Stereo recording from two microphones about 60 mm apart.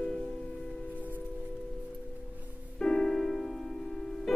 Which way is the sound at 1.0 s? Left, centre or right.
Right.